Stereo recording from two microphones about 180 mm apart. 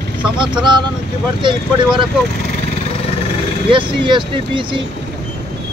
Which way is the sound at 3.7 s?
25° right (ahead or behind).